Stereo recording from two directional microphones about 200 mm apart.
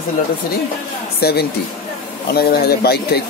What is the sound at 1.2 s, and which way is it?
A man's voice, 55° left (ahead or behind).